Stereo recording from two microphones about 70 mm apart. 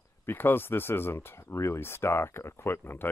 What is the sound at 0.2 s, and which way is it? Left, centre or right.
Speech, left.